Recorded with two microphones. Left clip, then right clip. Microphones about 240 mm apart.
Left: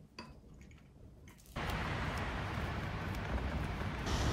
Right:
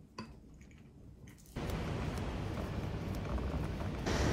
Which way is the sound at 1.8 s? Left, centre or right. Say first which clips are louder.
Left 3 dB; centre.